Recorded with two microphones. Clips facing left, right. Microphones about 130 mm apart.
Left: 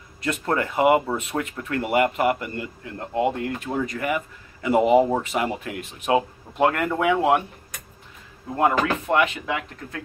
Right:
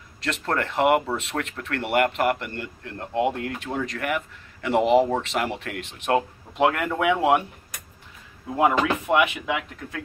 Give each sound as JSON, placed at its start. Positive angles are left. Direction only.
{"t": 0.2, "sound": "a man's voice", "side_deg": 10}
{"t": 8.5, "sound": "a man's voice", "side_deg": -5}